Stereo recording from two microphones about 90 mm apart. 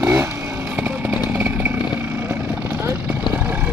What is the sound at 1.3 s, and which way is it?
Chainsaw, 20° right (ahead or behind).